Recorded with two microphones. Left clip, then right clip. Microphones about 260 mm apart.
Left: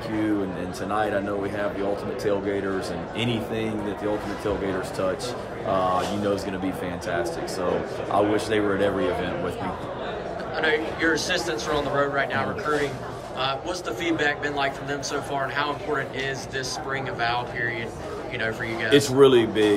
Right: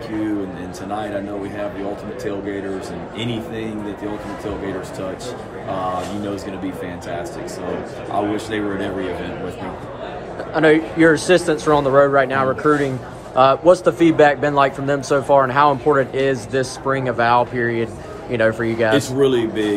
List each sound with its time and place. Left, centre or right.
10.5 s speech: centre
19.1 s speech: centre